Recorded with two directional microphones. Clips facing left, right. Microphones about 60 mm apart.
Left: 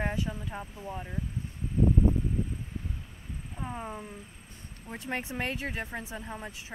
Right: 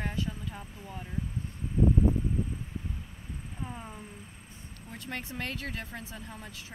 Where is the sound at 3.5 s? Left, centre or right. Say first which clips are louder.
Left 5 dB; centre.